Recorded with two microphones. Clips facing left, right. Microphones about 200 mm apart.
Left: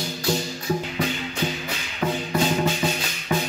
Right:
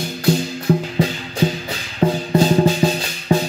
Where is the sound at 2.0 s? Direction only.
35° right (ahead or behind).